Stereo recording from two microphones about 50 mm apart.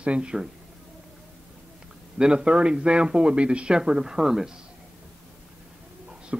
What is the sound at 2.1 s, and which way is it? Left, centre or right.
Speech, centre.